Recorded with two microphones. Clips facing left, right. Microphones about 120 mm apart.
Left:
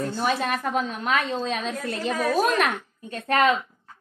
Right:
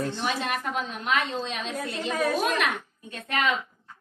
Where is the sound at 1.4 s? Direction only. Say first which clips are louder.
Left 4 dB; 40° left (ahead or behind).